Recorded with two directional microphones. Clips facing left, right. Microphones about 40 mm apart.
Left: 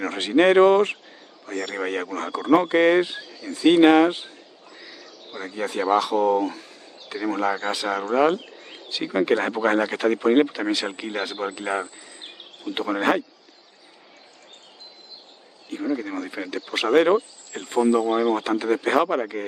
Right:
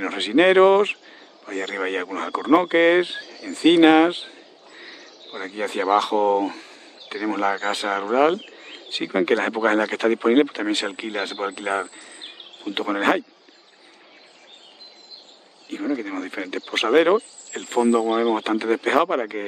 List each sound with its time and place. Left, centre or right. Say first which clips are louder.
0.0 s speech: right 1 dB; right
8.3 s bird: right 1 dB; right
9.1 s speech: right 1 dB; right
11.0 s speech: right 1 dB; right
12.2 s a sound: right 2 dB; right
16.0 s speech: right 1 dB; right
16.9 s speech: right 1 dB; right
17.6 s speech: right 1 dB; right